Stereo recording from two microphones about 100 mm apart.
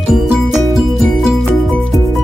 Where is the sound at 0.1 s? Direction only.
5° right (ahead or behind).